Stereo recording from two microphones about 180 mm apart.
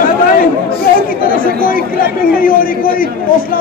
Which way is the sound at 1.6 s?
50° left (ahead or behind).